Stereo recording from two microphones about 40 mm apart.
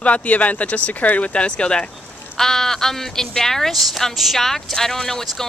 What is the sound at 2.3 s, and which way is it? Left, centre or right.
Speech, centre.